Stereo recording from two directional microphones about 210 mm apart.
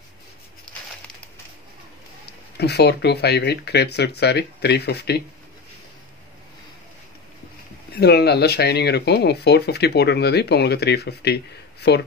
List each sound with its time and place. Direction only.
2.2 s speech: 50° left (ahead or behind)
8.0 s speech: 50° left (ahead or behind)